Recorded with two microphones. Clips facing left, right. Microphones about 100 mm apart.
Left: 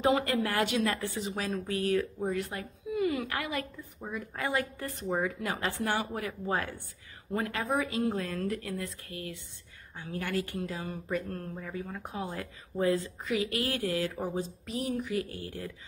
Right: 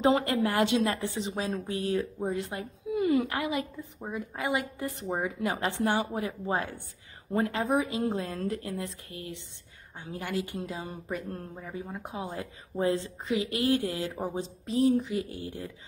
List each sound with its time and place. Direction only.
0.0 s a woman's voice: 25° right (ahead or behind)